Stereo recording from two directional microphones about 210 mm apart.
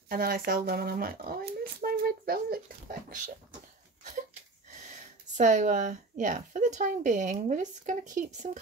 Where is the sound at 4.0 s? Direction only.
40° right (ahead or behind).